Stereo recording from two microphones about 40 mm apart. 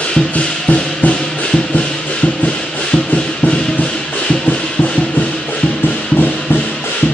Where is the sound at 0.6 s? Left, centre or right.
Left.